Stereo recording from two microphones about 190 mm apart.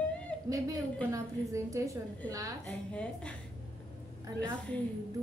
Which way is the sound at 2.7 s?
5° left (ahead or behind).